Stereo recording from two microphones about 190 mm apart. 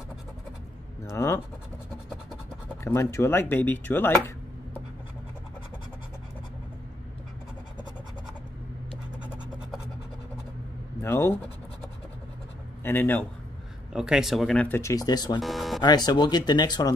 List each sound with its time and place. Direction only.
1.0 s speech: 15° left (ahead or behind)
2.8 s speech: 15° left (ahead or behind)
11.0 s speech: 15° left (ahead or behind)
12.8 s speech: 10° left (ahead or behind)
13.9 s speech: 5° right (ahead or behind); by 15.4 s 20° left (ahead or behind)
15.4 s music: centre (ahead or behind)
15.8 s speech: 20° left (ahead or behind)